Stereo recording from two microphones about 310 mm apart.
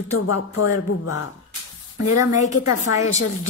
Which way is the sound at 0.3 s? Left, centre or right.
Left.